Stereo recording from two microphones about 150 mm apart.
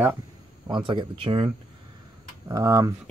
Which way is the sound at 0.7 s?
35° right (ahead or behind).